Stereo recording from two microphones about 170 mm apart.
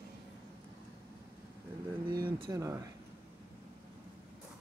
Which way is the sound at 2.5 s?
20° right (ahead or behind).